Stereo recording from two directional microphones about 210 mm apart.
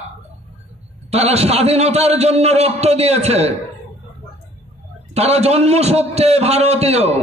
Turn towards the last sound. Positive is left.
turn(degrees=-30)  # may be behind; listen again after turning